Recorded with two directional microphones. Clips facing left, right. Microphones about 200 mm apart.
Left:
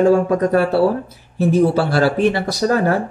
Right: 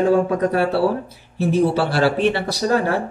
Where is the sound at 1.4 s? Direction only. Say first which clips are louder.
Left 3 dB; 45° left (ahead or behind).